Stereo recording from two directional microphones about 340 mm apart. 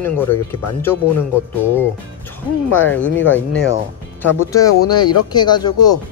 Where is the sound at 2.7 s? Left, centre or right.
Centre.